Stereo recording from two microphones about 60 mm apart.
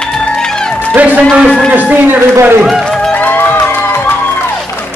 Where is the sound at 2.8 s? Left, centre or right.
Centre.